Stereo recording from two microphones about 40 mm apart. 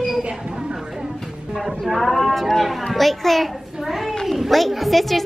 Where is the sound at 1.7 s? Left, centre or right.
Centre.